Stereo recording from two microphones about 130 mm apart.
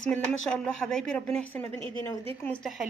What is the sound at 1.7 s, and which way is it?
Speech, 30° left (ahead or behind).